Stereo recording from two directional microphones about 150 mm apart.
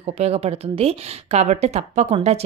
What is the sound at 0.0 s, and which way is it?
A woman's voice, 45° right (ahead or behind).